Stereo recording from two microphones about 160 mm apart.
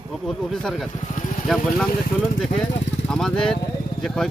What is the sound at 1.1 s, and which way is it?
Vehicle, 45° left (ahead or behind).